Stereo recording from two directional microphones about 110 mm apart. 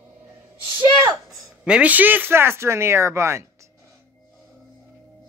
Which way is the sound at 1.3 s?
10° right (ahead or behind).